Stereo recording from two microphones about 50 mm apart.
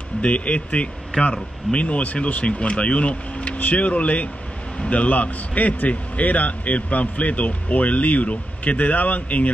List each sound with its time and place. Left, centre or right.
0.2 s a man's voice: left